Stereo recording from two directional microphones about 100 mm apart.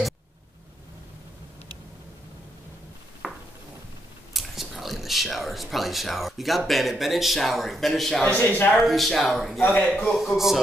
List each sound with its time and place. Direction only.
3.2 s a sound: 5° right (ahead or behind)
4.3 s speech: centre (ahead or behind)
8.3 s speech: 15° left (ahead or behind)
8.7 s speech: centre (ahead or behind)